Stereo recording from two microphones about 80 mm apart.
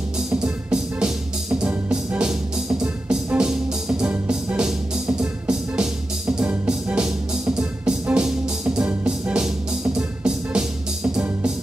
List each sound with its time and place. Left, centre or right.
0.3 s music: centre